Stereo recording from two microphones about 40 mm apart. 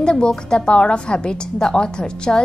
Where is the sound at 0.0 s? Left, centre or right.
Centre.